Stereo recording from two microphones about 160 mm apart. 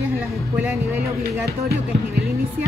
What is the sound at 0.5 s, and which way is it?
Speech, 10° right (ahead or behind).